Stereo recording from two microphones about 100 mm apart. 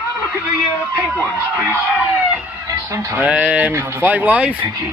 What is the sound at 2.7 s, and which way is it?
Speech, 30° right (ahead or behind).